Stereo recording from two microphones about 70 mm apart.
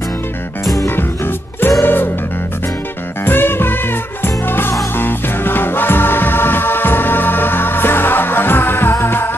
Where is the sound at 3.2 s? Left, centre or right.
Left.